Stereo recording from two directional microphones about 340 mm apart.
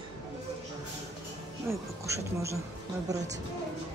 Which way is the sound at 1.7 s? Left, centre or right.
Centre.